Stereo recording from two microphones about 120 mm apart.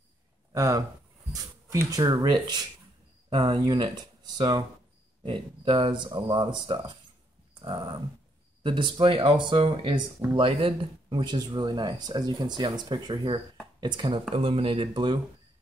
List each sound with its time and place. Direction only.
0.5 s speech: 30° right (ahead or behind)
5.2 s speech: 50° right (ahead or behind)
14.3 s speech: 55° right (ahead or behind)